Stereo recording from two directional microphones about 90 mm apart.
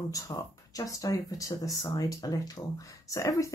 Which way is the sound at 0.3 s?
45° left (ahead or behind).